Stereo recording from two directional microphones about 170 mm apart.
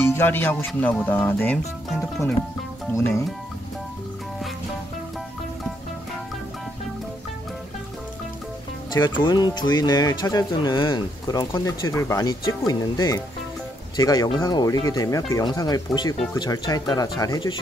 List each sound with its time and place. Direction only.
0.1 s speech: 10° left (ahead or behind)
2.9 s speech: 15° left (ahead or behind)
8.9 s speech: 25° left (ahead or behind)